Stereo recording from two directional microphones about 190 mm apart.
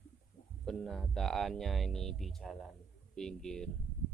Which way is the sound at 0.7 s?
Centre (ahead or behind).